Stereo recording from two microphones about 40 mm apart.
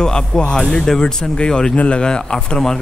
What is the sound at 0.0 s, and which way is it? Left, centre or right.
Speech, centre.